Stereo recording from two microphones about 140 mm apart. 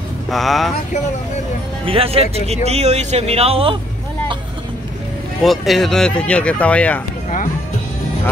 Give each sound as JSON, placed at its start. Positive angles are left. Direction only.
{"t": 0.3, "sound": "speech", "side_deg": 0}
{"t": 1.9, "sound": "speech", "side_deg": -45}
{"t": 5.4, "sound": "speech", "side_deg": 0}